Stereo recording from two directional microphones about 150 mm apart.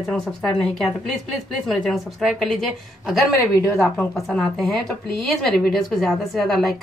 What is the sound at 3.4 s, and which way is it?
Speech, 15° left (ahead or behind).